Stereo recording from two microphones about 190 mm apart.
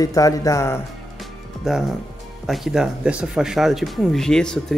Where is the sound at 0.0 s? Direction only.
20° left (ahead or behind).